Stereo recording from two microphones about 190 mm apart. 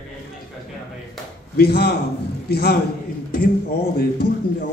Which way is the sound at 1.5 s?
55° left (ahead or behind).